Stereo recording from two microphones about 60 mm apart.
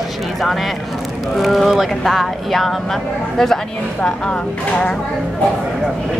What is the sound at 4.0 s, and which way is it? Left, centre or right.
Speech, centre.